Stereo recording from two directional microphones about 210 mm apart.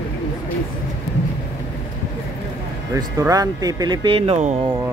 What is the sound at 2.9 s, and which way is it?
Speech, 15° right (ahead or behind).